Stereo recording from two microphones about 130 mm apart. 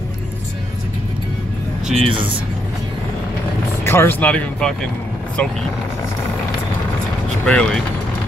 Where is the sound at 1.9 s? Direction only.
40° right (ahead or behind).